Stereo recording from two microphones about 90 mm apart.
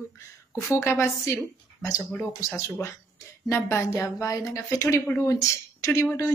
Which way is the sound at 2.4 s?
35° left (ahead or behind).